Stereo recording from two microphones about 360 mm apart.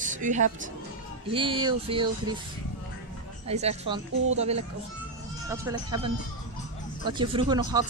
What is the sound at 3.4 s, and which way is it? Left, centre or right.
Speech, centre.